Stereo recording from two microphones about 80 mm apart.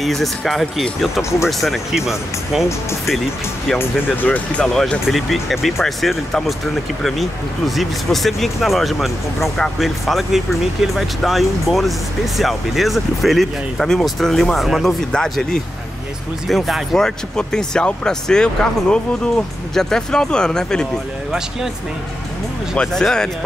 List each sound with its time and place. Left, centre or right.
0.0 s speech: centre
3.7 s speech: left
5.0 s speech: centre
22.8 s speech: centre